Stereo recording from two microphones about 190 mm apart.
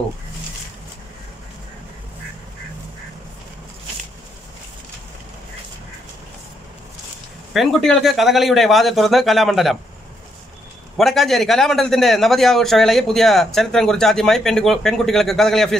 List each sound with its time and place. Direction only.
7.5 s a man's voice: centre (ahead or behind)
11.0 s a man's voice: centre (ahead or behind)